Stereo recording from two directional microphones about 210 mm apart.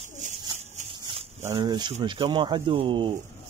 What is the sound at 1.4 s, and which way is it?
Speech, 15° right (ahead or behind).